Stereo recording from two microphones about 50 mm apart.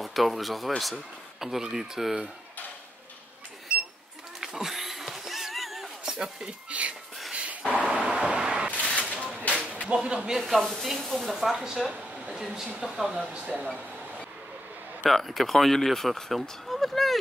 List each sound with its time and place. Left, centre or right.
0.0 s speech: centre
4.4 s a sound: centre
6.1 s speech: centre
6.7 s whispering: right
7.7 s a sound: right
9.8 s speech: right
10.4 s speech: centre
13.2 s speech: right
15.0 s speech: centre